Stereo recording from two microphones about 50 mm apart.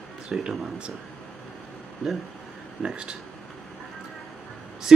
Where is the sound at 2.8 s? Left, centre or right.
Centre.